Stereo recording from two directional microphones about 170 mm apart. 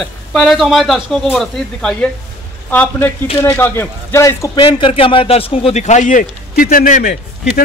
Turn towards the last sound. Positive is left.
turn(degrees=50)  # may be behind; listen again after turning